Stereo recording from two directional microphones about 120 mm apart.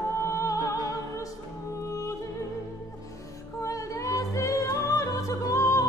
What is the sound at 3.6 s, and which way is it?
Music, 25° left (ahead or behind).